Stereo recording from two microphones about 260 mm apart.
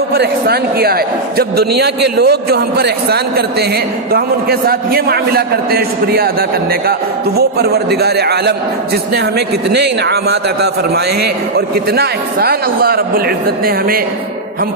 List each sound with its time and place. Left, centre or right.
0.1 s a man's voice: right
9.8 s a man's voice: right